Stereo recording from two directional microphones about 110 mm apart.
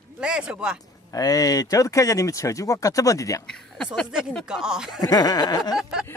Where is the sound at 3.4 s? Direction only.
5° left (ahead or behind).